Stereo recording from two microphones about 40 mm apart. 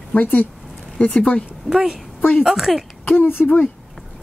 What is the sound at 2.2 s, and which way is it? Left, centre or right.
Speech, left.